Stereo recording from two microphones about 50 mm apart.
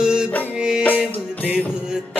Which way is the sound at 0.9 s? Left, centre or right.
Right.